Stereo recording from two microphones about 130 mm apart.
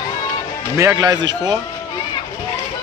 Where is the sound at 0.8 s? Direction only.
25° right (ahead or behind).